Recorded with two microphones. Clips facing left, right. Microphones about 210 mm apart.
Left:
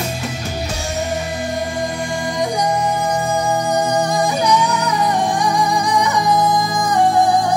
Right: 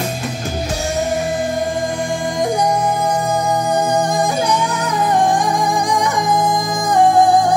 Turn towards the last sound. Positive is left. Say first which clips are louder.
# even
turn(degrees=-50)  # may be behind; listen again after turning